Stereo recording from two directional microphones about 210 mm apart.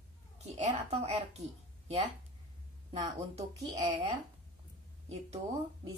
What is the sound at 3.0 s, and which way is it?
Speech, 20° right (ahead or behind).